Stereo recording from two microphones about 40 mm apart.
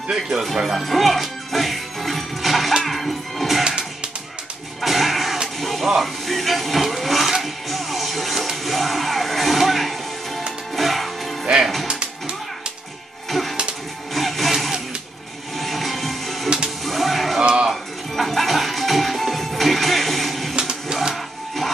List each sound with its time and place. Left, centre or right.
0.7 s music: centre
3.6 s music: right
4.8 s music: centre
5.9 s speech: centre
7.4 s music: centre
11.9 s music: right
13.3 s music: centre
15.5 s music: centre
16.4 s music: centre
16.8 s music: centre
17.4 s a sound: right
17.6 s music: centre
20.5 s music: centre